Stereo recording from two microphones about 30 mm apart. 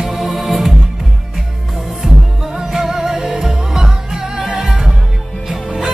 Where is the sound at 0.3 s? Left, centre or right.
Centre.